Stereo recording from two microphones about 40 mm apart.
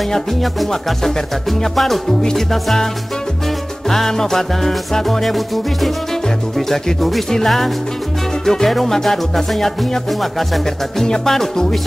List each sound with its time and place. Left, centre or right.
1.6 s music: centre
3.9 s music: centre
11.2 s music: centre